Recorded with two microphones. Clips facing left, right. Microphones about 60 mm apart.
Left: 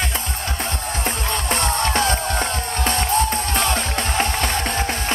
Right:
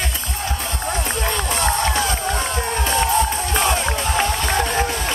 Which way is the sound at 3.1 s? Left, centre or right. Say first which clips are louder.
Right 1 dB; left.